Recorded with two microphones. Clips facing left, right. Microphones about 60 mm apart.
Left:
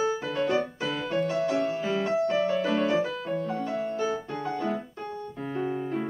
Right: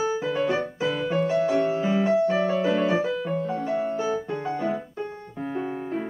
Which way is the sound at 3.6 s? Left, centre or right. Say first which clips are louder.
Right 4 dB; right.